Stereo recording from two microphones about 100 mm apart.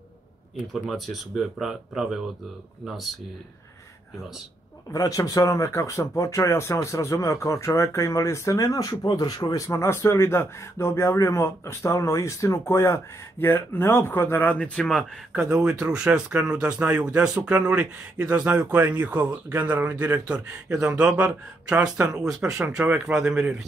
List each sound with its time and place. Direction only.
0.8 s speech: centre (ahead or behind)
4.9 s speech: 35° left (ahead or behind)
9.7 s speech: 30° left (ahead or behind); by 15.0 s 5° left (ahead or behind)
15.3 s speech: 10° right (ahead or behind)